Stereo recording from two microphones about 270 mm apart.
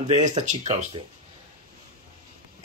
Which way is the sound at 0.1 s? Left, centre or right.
Right.